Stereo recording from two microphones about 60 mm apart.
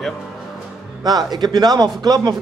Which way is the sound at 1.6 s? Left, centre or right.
Right.